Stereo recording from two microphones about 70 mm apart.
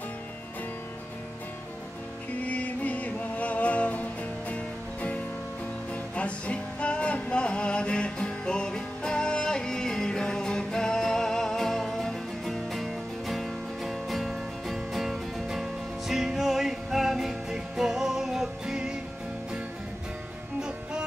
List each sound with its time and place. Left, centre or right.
2.4 s music: left; by 18.9 s centre